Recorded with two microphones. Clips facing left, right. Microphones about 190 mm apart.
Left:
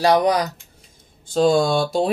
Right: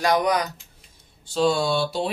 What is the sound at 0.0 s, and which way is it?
Speech, 35° left (ahead or behind).